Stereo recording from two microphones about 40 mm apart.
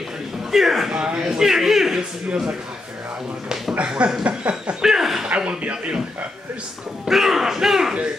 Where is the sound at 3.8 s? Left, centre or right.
Right.